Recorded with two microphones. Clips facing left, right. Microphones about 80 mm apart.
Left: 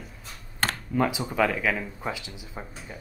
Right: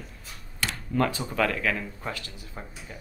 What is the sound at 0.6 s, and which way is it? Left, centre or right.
Computer keyboard, left.